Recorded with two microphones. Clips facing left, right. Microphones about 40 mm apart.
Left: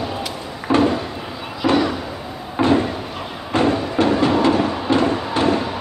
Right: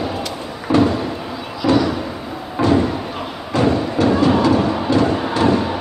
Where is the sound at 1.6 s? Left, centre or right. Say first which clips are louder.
Right 2 dB; left.